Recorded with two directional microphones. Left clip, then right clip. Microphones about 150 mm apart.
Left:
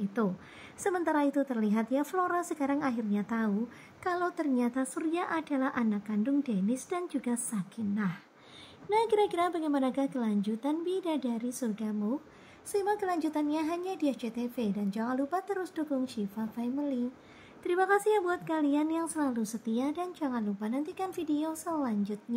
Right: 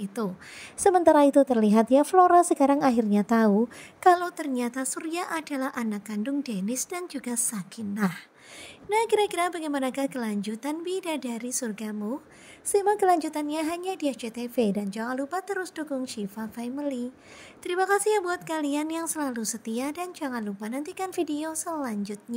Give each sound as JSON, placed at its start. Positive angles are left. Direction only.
{"t": 0.8, "sound": "a woman's voice", "side_deg": -40}
{"t": 8.8, "sound": "a woman's voice", "side_deg": -40}